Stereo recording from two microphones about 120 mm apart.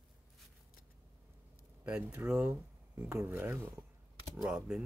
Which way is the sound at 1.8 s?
10° right (ahead or behind).